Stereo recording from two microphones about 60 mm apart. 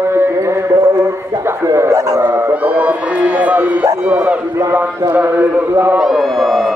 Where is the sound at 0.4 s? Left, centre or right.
Right.